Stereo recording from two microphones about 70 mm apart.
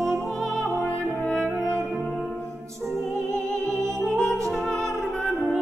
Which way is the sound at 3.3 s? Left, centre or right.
Centre.